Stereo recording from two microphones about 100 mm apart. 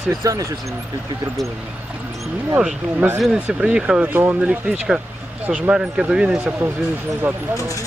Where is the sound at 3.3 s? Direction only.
15° right (ahead or behind).